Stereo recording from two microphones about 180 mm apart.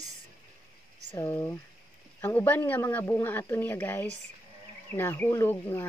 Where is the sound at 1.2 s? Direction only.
15° left (ahead or behind).